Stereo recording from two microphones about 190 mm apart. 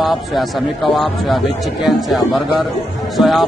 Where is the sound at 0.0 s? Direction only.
Centre (ahead or behind).